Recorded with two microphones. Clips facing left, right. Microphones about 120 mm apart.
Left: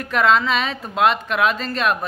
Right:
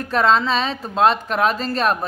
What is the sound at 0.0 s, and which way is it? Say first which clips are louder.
A woman's voice: even; 30° right (ahead or behind).